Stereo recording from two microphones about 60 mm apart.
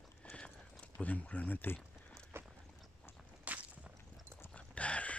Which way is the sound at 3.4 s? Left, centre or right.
Right.